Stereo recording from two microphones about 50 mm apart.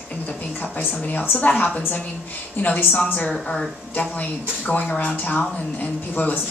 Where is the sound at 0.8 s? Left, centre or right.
Left.